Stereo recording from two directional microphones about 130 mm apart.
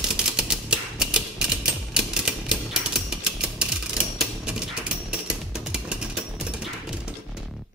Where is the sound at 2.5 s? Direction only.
5° right (ahead or behind).